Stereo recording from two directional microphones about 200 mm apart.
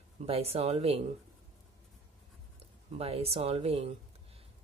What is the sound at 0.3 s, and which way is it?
Speech, 30° right (ahead or behind).